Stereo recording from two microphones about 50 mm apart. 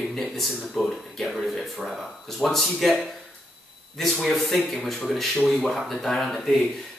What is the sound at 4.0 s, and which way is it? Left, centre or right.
Speech, centre.